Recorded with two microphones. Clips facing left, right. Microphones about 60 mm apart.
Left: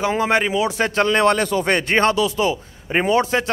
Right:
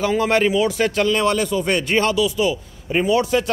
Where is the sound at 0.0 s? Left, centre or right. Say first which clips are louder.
Right 1 dB; left.